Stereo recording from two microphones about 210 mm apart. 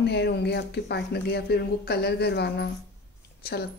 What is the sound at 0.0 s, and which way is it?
A woman's voice, 55° left (ahead or behind).